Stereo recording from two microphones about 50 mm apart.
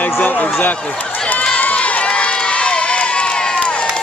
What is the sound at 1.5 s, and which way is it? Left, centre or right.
Crowd, left.